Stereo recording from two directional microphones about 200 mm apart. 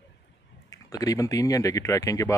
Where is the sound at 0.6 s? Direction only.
15° left (ahead or behind).